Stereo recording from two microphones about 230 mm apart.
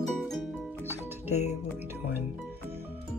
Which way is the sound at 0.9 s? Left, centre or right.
Centre.